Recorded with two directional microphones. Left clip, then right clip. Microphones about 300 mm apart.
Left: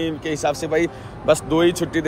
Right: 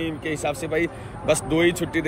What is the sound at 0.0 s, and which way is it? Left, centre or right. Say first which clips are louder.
Speech: left 4 dB; centre.